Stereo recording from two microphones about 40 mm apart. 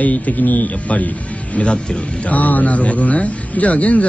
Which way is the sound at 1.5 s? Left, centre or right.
Left.